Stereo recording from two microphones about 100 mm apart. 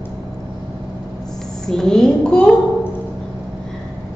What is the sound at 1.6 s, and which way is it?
Speech, 5° left (ahead or behind).